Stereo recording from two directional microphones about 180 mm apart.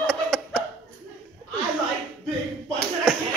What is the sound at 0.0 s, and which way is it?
Chuckle, 5° left (ahead or behind).